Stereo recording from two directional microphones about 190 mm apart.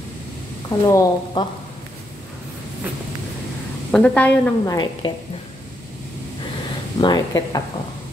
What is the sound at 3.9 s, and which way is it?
Speech, 5° left (ahead or behind).